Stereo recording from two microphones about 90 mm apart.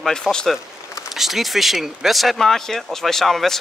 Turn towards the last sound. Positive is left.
turn(degrees=5)  # may be behind; listen again after turning